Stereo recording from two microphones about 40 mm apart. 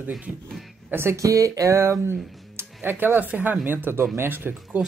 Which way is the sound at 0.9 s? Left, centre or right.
Right.